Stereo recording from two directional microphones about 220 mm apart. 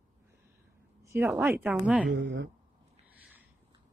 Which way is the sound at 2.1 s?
55° right (ahead or behind).